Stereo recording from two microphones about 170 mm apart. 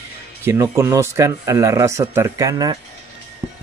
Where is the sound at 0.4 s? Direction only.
15° right (ahead or behind).